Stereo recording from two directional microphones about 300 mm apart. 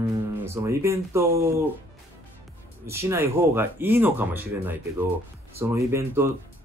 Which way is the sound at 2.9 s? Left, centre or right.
Centre.